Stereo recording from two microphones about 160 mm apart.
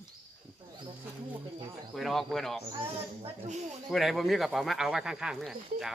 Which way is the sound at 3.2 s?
45° right (ahead or behind).